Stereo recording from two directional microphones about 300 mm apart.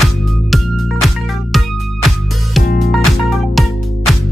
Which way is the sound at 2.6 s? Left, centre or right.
Left.